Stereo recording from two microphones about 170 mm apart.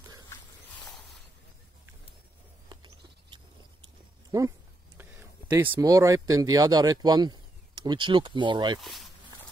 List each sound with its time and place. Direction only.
2.7 s a sound: 30° right (ahead or behind)
5.1 s speech: 10° right (ahead or behind); by 8.8 s 25° right (ahead or behind)
8.8 s speech: centre (ahead or behind)